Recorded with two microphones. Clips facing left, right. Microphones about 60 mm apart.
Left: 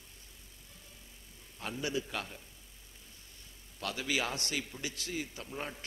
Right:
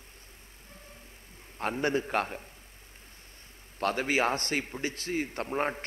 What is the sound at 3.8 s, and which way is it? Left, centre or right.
A man's voice, right.